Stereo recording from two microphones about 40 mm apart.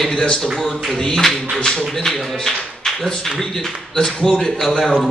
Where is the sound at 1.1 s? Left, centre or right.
Centre.